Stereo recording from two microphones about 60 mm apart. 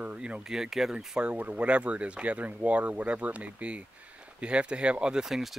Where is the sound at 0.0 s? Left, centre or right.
Right.